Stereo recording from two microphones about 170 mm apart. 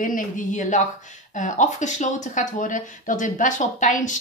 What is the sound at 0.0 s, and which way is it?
Speech, 50° left (ahead or behind).